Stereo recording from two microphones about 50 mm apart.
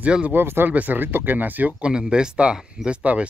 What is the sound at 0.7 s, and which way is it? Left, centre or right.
Speech, right.